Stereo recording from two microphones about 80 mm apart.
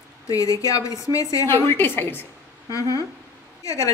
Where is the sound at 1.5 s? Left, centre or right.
Left.